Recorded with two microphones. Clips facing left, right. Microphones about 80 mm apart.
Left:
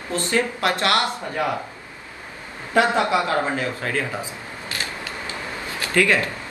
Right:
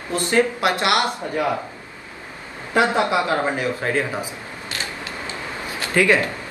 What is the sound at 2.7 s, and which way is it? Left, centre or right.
Speech, right.